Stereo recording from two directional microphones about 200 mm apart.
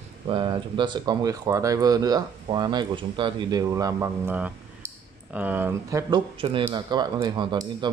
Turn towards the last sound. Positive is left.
turn(degrees=-20)  # may be behind; listen again after turning